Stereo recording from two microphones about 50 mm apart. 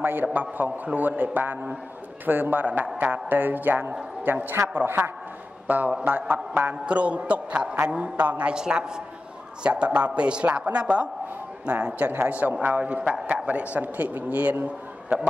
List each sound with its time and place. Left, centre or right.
0.0 s a man's voice: right
5.7 s a man's voice: right
6.7 s a woman's voice: right
8.5 s a woman's voice: centre; by 14.6 s right